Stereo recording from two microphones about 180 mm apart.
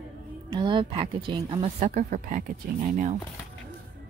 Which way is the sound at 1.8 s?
40° right (ahead or behind).